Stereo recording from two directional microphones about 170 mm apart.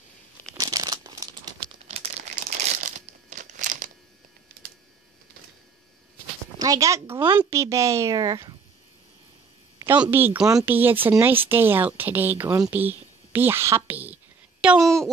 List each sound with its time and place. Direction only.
0.6 s crumpling: 25° right (ahead or behind)
1.9 s crumpling: 40° right (ahead or behind)
6.6 s a woman's voice: 20° right (ahead or behind)
9.8 s speech: 15° right (ahead or behind)
12.6 s a sound: 10° right (ahead or behind)